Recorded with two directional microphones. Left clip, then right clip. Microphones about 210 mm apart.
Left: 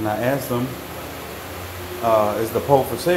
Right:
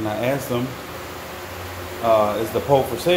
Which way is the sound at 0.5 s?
5° left (ahead or behind).